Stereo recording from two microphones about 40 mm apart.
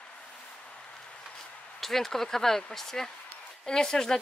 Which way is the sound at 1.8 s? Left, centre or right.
Centre.